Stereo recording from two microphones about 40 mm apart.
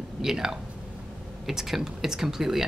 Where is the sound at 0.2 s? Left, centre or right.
Centre.